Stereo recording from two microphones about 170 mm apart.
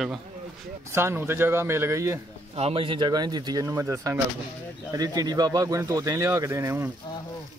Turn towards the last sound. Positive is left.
turn(degrees=-15)  # may be behind; listen again after turning